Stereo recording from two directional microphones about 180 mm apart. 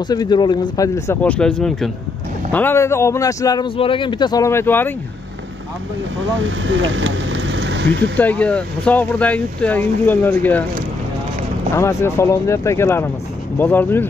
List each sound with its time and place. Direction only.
0.1 s speech: 20° left (ahead or behind)
6.4 s speech: 90° right
8.2 s speech: 10° left (ahead or behind)
11.7 s speech: 15° left (ahead or behind)